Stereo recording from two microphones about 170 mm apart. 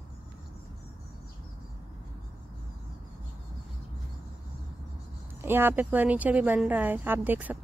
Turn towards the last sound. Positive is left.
turn(degrees=-10)  # may be behind; listen again after turning